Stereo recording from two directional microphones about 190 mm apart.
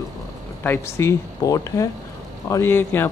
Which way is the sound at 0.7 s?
15° left (ahead or behind).